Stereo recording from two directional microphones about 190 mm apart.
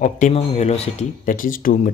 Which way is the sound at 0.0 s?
35° left (ahead or behind).